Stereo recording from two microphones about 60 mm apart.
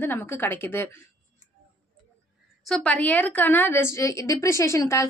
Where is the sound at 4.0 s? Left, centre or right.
Left.